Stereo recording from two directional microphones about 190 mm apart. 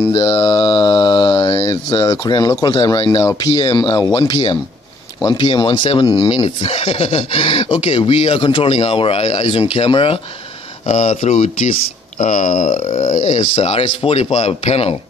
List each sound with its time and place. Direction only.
0.1 s mantra: 15° left (ahead or behind)
2.6 s speech: 20° left (ahead or behind)